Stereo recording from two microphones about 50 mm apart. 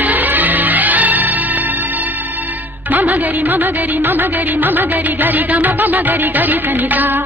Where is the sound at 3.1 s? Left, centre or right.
Right.